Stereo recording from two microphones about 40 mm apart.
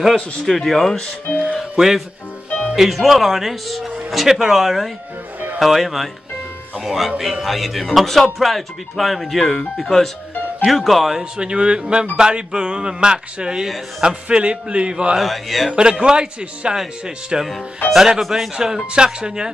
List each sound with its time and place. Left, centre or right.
0.1 s speech: centre
1.8 s speech: centre
11.1 s speech: right
15.1 s speech: centre
15.7 s speech: right